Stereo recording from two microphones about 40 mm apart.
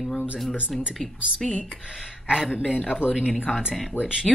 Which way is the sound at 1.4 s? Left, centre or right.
Centre.